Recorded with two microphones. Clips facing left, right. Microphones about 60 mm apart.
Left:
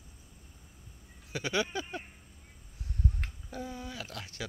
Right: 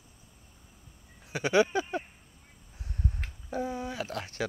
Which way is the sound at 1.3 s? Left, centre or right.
Right.